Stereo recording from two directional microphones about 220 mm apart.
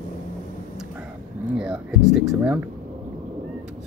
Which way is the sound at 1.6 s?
5° right (ahead or behind).